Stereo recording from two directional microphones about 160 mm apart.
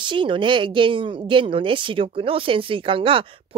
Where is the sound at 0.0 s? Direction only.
30° right (ahead or behind).